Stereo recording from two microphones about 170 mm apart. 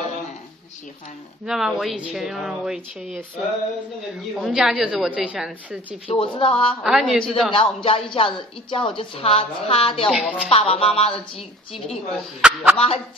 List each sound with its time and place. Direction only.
1.4 s a woman's voice: centre (ahead or behind)
4.4 s a woman's voice: 5° right (ahead or behind)
6.0 s speech: 30° left (ahead or behind)
6.8 s a woman's voice: centre (ahead or behind)
7.5 s speech: 30° left (ahead or behind)
10.0 s a woman's voice: centre (ahead or behind)
10.5 s speech: 35° left (ahead or behind)
12.1 s a woman's voice: centre (ahead or behind)
12.7 s speech: 35° left (ahead or behind)